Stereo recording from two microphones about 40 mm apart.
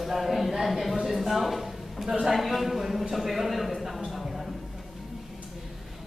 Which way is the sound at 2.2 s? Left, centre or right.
Centre.